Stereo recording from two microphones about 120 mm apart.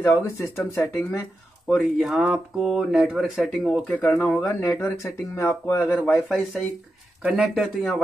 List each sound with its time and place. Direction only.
0.0 s speech: 20° left (ahead or behind)
1.8 s speech: centre (ahead or behind); by 5.9 s 15° left (ahead or behind)
6.1 s speech: centre (ahead or behind)